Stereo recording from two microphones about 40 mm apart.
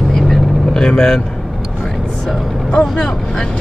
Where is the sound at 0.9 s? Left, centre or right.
Centre.